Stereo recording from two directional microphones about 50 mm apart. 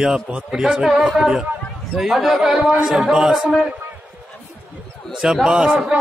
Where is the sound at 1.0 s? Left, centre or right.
Centre.